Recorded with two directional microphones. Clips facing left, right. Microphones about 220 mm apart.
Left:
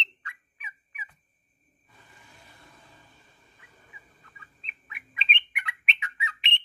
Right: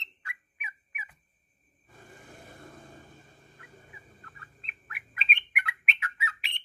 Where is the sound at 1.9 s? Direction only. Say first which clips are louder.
Right 7 dB; 50° right (ahead or behind).